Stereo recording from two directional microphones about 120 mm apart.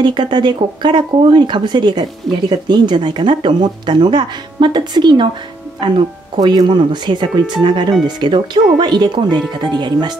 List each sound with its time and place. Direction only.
0.0 s speech: 40° right (ahead or behind)